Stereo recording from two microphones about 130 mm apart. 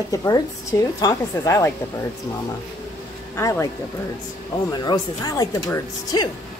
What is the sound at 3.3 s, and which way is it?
A woman's voice, 25° left (ahead or behind).